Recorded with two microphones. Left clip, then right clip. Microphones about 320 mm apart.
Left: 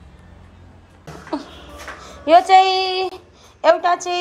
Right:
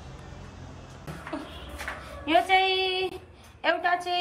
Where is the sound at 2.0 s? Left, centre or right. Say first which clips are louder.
Left 11 dB; centre.